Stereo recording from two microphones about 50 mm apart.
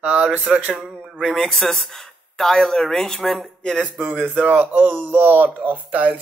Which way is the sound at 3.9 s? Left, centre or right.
Right.